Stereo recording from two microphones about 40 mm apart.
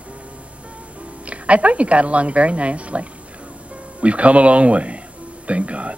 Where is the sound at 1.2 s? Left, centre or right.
Right.